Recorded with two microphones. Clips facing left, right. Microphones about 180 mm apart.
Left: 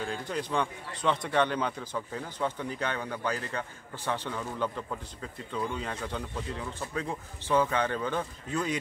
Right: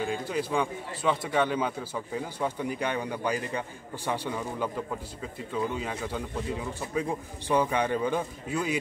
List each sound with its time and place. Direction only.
0.0 s a man's voice: 10° right (ahead or behind)